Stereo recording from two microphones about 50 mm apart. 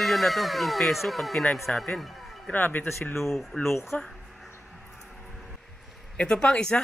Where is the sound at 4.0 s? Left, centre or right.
Centre.